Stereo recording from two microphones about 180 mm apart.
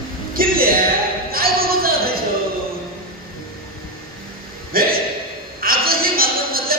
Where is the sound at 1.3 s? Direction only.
55° right (ahead or behind).